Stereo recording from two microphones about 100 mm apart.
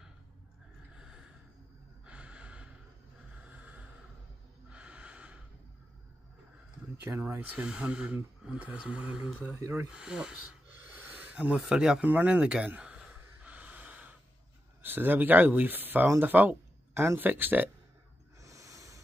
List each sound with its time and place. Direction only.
0.9 s a sound: 5° right (ahead or behind)
2.0 s gasp: 10° right (ahead or behind)
4.6 s snort: 10° right (ahead or behind)
7.2 s speech: 20° right (ahead or behind)
9.5 s speech: 25° right (ahead or behind)
9.8 s speech: 10° right (ahead or behind)
11.0 s a sound: 15° right (ahead or behind)
14.8 s speech: 20° right (ahead or behind)
18.4 s snort: 35° right (ahead or behind)